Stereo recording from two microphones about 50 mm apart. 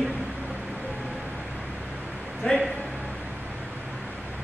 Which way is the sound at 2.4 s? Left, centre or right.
Centre.